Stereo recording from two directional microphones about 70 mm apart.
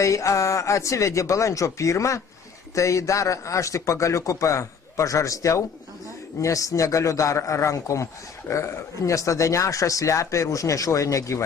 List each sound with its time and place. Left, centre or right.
0.0 s speech: left